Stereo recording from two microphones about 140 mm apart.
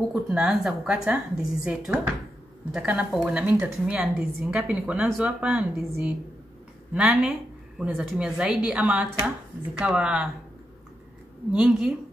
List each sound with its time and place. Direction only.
0.1 s a woman's voice: 5° right (ahead or behind)
11.5 s a woman's voice: 10° right (ahead or behind)